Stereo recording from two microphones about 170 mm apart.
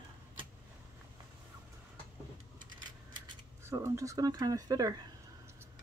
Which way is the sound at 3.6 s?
15° right (ahead or behind).